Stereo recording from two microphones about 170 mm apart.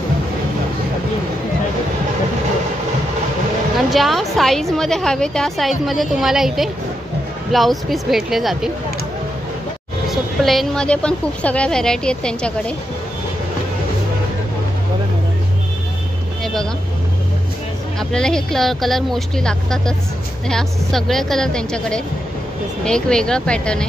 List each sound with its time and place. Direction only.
3.7 s a woman's voice: centre (ahead or behind)
10.0 s a woman's voice: centre (ahead or behind)
17.9 s a woman's voice: 5° left (ahead or behind)